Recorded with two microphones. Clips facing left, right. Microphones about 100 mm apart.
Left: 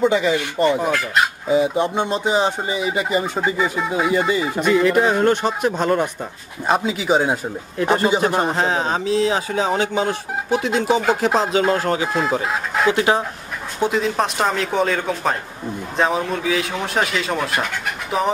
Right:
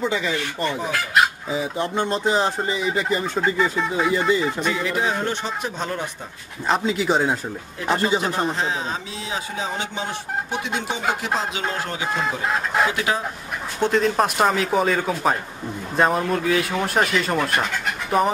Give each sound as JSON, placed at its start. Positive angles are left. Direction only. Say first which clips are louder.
{"t": 0.0, "sound": "speech", "louder": "left 6 dB", "side_deg": 15}
{"t": 0.9, "sound": "speech", "louder": "even", "side_deg": 0}
{"t": 2.0, "sound": "speech", "louder": "left 2 dB", "side_deg": 10}
{"t": 4.6, "sound": "a man's voice", "louder": "left 7 dB", "side_deg": 55}
{"t": 6.7, "sound": "speech", "louder": "left 2 dB", "side_deg": 5}
{"t": 7.8, "sound": "speech", "louder": "left 4 dB", "side_deg": 45}
{"t": 8.8, "sound": "speech", "louder": "left 11 dB", "side_deg": 80}
{"t": 10.9, "sound": "speech", "louder": "left 8 dB", "side_deg": 35}
{"t": 12.1, "sound": "speech", "louder": "left 3 dB", "side_deg": 0}
{"t": 12.9, "sound": "speech", "louder": "left 6 dB", "side_deg": 30}
{"t": 13.7, "sound": "speech", "louder": "even", "side_deg": 5}